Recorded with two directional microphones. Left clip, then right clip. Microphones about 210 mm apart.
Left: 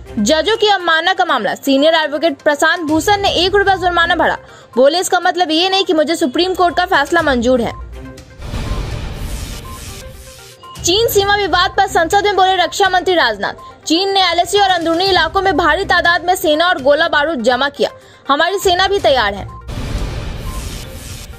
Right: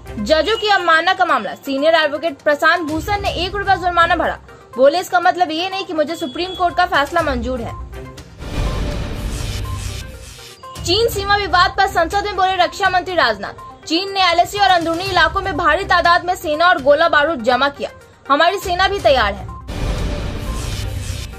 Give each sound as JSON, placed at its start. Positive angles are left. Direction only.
{"t": 0.2, "sound": "a woman's voice", "side_deg": 35}
{"t": 10.8, "sound": "a woman's voice", "side_deg": 35}